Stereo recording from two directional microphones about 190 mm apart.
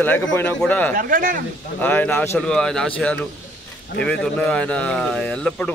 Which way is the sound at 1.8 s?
10° left (ahead or behind).